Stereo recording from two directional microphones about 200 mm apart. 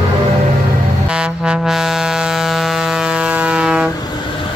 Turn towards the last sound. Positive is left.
turn(degrees=-5)  # may be behind; listen again after turning